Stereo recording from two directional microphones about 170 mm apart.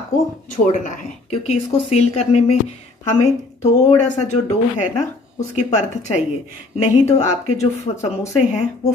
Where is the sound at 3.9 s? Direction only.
40° left (ahead or behind).